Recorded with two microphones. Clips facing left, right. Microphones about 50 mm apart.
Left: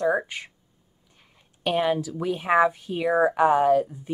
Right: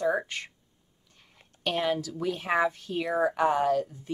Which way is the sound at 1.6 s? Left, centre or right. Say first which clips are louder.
Left 5 dB; centre.